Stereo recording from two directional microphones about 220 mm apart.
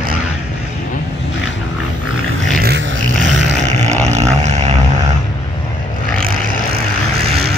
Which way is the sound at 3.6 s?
30° right (ahead or behind).